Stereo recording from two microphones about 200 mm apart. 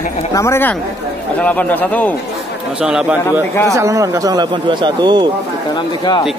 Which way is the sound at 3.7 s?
15° right (ahead or behind).